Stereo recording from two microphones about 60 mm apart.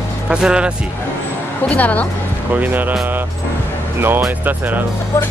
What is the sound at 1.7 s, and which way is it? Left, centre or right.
Speech, left.